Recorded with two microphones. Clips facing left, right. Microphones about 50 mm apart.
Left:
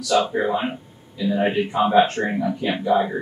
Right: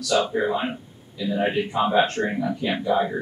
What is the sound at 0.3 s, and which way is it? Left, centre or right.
Speech, centre.